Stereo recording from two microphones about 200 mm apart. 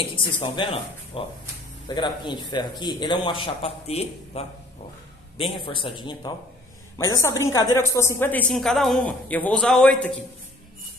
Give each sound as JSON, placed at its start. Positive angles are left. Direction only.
{"t": 0.0, "sound": "a man's voice", "side_deg": 25}